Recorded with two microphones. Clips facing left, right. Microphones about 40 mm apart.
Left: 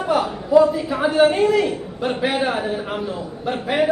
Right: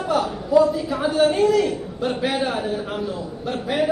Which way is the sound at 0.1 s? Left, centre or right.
Centre.